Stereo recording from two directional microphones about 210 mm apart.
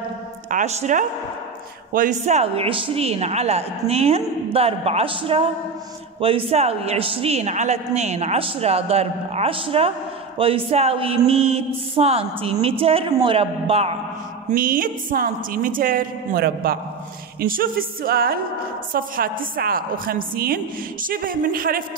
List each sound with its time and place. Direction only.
0.5 s a woman's voice: 35° right (ahead or behind)
14.5 s a woman's voice: 40° right (ahead or behind)